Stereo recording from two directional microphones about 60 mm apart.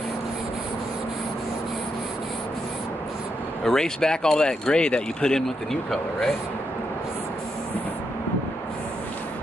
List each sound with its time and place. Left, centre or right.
3.6 s speech: centre